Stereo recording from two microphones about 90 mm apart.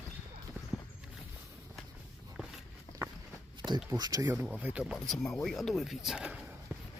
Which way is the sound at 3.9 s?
50° right (ahead or behind).